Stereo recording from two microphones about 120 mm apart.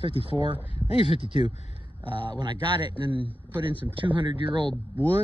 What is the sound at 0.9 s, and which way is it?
Speech, 50° left (ahead or behind).